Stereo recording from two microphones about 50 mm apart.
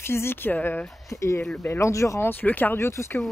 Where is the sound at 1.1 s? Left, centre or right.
Left.